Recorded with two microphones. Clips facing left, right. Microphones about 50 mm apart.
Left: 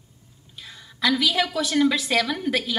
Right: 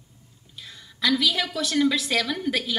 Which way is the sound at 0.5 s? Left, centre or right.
Centre.